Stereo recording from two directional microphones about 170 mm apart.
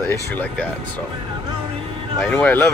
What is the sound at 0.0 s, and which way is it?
Speech, 10° left (ahead or behind).